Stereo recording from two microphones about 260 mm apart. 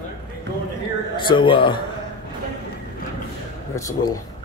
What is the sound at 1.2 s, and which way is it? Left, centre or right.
Speech, centre.